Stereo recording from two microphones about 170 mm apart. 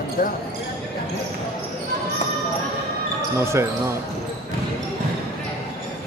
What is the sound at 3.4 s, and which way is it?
Speech, 15° right (ahead or behind).